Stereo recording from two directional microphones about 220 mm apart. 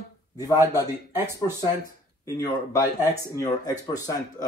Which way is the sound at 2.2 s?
15° left (ahead or behind).